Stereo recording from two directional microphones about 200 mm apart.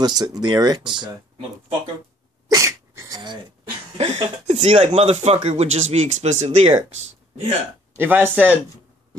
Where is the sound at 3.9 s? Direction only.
35° right (ahead or behind).